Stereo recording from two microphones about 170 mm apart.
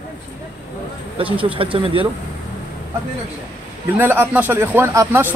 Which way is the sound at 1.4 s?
30° right (ahead or behind).